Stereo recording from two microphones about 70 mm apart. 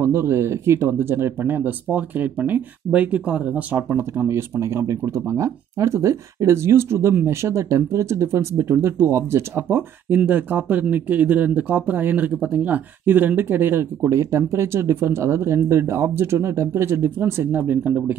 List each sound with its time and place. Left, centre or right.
0.0 s speech: right
3.9 s speech: right
14.0 s speech: right
17.5 s speech: right